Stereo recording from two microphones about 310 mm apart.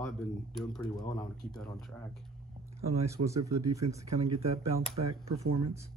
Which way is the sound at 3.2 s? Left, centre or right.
Right.